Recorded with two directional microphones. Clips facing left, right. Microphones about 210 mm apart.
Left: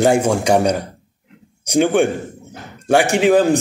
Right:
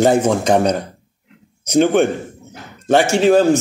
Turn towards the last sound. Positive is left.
turn(degrees=15)  # may be behind; listen again after turning